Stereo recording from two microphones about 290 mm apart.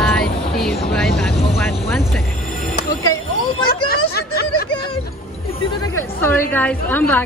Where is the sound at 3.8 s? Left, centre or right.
Left.